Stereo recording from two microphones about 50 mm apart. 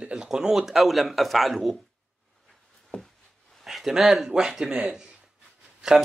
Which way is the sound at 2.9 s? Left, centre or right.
Left.